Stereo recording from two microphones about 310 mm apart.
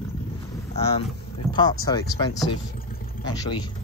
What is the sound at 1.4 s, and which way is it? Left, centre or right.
Speech, centre.